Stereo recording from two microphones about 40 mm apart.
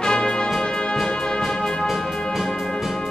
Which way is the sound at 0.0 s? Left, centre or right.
Centre.